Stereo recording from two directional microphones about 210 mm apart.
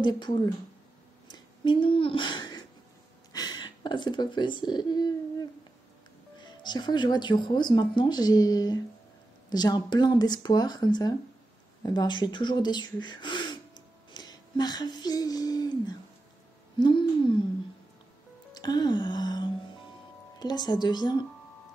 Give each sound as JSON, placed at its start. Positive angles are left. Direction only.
{"t": 0.0, "sound": "speech", "side_deg": 20}
{"t": 1.3, "sound": "a sound", "side_deg": 25}
{"t": 3.3, "sound": "speech", "side_deg": 20}
{"t": 6.4, "sound": "speech", "side_deg": 20}
{"t": 11.8, "sound": "gasp", "side_deg": 20}
{"t": 16.7, "sound": "speech", "side_deg": 20}
{"t": 18.5, "sound": "music", "side_deg": 20}
{"t": 20.3, "sound": "speech", "side_deg": 20}